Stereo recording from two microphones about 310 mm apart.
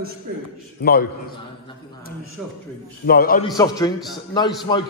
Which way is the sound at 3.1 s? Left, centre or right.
Left.